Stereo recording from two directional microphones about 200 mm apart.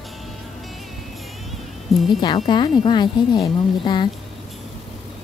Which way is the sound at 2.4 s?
20° left (ahead or behind).